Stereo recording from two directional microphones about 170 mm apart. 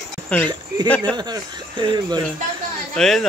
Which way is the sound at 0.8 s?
10° left (ahead or behind).